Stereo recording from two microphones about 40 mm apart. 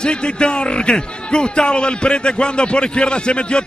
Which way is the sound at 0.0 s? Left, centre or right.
Left.